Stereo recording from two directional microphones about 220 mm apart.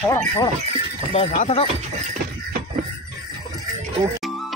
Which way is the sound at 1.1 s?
30° left (ahead or behind).